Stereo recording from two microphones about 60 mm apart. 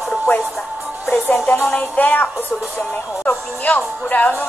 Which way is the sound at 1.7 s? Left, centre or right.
Left.